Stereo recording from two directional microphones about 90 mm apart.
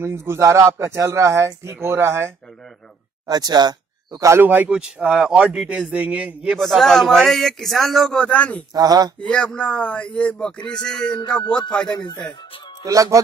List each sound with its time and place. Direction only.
0.0 s speech: 30° right (ahead or behind)
3.3 s speech: 45° right (ahead or behind)
4.4 s a man's voice: 20° right (ahead or behind)
6.5 s a man's voice: centre (ahead or behind)
8.7 s speech: 45° right (ahead or behind)
9.3 s speech: 10° left (ahead or behind)
12.8 s speech: 40° right (ahead or behind)